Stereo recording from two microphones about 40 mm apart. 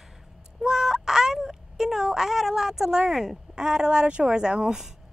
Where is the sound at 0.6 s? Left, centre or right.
Centre.